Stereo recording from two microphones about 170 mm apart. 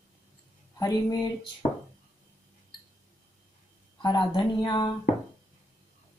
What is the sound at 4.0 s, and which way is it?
Speech, 25° left (ahead or behind).